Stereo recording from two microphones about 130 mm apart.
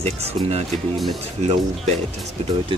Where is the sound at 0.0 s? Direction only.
50° right (ahead or behind).